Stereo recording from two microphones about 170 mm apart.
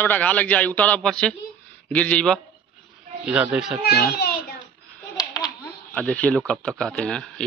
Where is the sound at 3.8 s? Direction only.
70° left (ahead or behind).